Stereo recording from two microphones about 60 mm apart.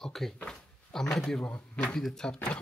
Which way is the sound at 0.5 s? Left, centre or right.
Centre.